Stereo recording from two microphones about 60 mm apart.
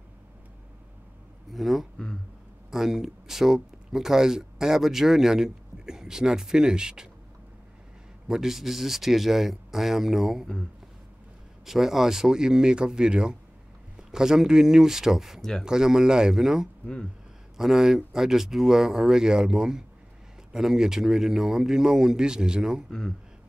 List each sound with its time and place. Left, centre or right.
1.5 s speech: centre
8.3 s speech: centre
11.6 s speech: centre
16.8 s speech: centre
17.6 s speech: centre
22.8 s speech: centre